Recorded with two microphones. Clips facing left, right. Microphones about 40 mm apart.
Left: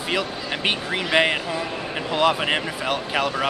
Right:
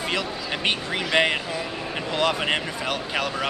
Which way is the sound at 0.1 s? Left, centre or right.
Centre.